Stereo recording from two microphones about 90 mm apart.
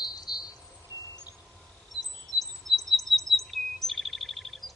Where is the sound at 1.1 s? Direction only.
45° left (ahead or behind).